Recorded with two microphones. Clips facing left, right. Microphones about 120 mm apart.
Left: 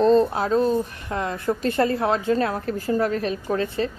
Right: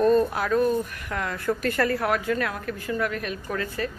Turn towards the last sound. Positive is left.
turn(degrees=30)  # may be behind; listen again after turning